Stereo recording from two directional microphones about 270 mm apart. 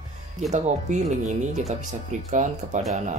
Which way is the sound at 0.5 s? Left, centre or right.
Right.